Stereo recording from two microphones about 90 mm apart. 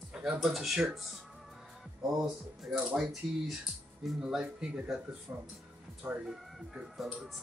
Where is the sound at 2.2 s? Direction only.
5° right (ahead or behind).